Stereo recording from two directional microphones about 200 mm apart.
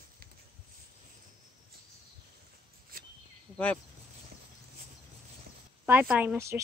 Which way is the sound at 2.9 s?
45° right (ahead or behind).